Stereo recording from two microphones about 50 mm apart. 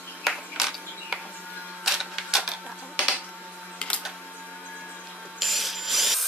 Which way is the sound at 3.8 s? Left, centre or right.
Left.